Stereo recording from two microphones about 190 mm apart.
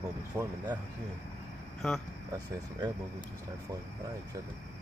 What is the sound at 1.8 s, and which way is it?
Speech, centre (ahead or behind).